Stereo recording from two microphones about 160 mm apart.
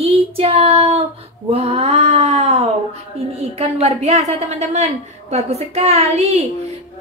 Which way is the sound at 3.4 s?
40° right (ahead or behind).